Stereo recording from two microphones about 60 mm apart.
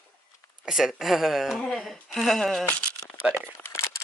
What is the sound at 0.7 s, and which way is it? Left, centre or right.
Speech, centre.